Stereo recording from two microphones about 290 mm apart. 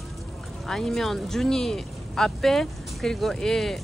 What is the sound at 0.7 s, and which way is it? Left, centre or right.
Speech, centre.